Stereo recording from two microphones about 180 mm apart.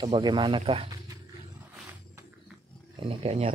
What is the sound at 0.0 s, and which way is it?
Speech, 25° right (ahead or behind).